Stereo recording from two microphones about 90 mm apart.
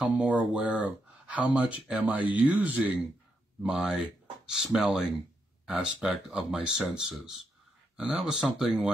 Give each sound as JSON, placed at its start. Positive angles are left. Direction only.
{"t": 0.0, "sound": "speech", "side_deg": -15}